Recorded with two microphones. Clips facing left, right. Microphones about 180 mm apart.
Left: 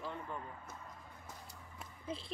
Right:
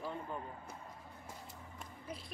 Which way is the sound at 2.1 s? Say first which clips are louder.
Left 4 dB; 25° left (ahead or behind).